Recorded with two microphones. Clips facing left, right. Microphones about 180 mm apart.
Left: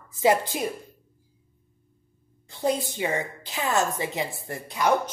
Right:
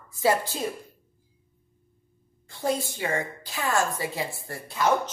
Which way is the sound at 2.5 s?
20° left (ahead or behind).